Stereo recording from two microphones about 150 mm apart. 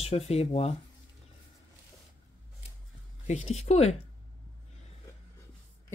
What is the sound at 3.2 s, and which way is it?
Speech, 45° left (ahead or behind).